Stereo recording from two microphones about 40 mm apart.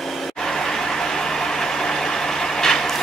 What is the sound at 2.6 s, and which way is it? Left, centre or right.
Vehicle, centre.